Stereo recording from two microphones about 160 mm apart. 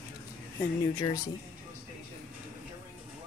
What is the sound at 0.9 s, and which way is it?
Speech, 20° left (ahead or behind).